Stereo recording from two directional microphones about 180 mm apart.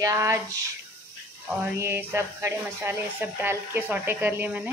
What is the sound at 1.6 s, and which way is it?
Speech, 10° right (ahead or behind).